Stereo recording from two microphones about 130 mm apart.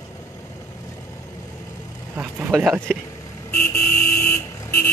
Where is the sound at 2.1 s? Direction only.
15° right (ahead or behind).